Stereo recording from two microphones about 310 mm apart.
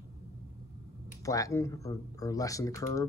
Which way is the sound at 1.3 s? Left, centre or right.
Centre.